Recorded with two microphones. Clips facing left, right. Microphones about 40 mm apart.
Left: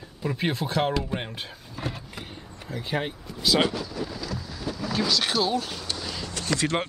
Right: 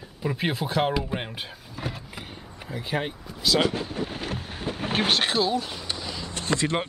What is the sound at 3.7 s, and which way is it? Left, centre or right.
Boat, right.